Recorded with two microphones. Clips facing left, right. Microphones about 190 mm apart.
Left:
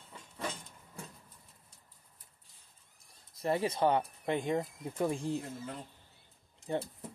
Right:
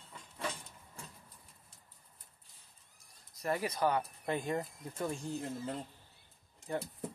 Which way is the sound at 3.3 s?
25° left (ahead or behind).